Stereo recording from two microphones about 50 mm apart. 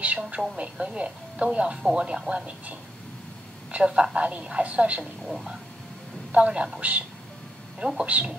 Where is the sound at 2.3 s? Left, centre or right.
Right.